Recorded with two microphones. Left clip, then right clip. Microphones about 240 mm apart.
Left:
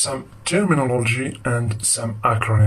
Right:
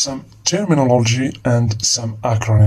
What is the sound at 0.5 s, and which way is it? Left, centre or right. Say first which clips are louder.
Speech: right 4 dB; right.